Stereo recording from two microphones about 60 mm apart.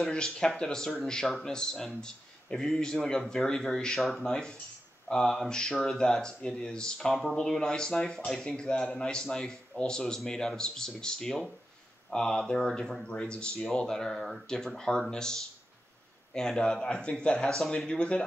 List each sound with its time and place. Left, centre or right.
0.1 s a man's voice: centre